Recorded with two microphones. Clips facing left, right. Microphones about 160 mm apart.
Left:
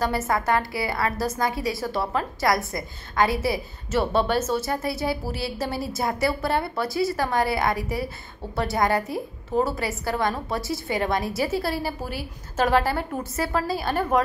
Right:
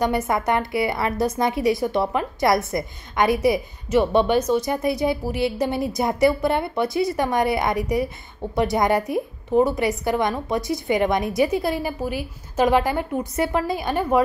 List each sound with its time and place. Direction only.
0.3 s a woman's voice: 20° right (ahead or behind)